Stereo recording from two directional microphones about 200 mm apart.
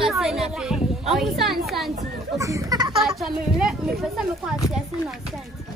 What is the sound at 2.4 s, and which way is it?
Speech, 15° right (ahead or behind).